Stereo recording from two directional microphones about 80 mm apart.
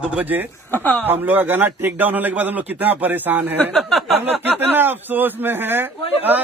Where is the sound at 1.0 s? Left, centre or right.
Right.